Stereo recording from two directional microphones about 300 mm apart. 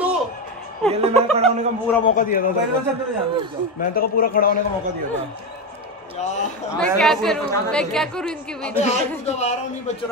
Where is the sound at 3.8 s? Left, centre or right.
Left.